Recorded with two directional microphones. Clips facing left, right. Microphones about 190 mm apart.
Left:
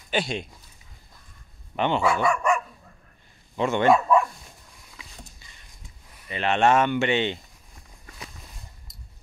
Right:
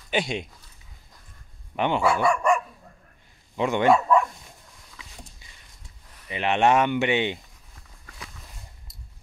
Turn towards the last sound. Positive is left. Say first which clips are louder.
# even
turn(degrees=-10)  # may be behind; listen again after turning